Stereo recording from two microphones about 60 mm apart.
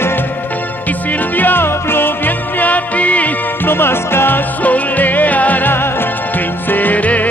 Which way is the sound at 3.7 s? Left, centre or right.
Left.